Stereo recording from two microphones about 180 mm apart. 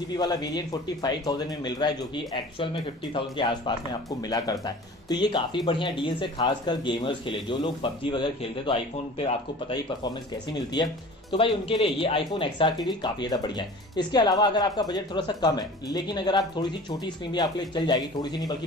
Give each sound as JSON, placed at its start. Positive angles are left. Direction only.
{"t": 0.1, "sound": "speech", "side_deg": 25}